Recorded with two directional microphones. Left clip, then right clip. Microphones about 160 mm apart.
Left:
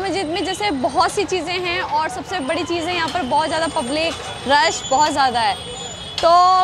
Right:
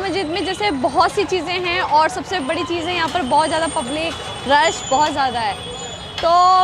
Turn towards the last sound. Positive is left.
turn(degrees=-15)  # may be behind; listen again after turning